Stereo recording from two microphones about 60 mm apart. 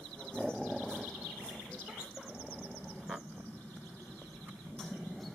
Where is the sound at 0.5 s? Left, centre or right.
Centre.